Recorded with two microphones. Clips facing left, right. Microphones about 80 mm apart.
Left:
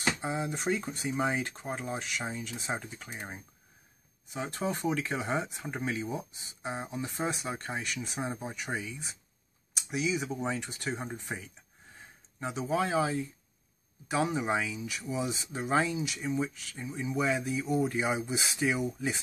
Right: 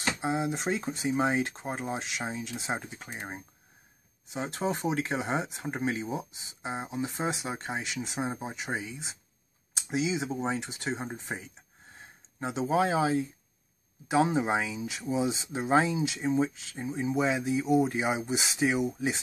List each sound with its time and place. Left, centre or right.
0.2 s speech: centre
2.3 s speech: right
2.8 s speech: right
4.6 s speech: centre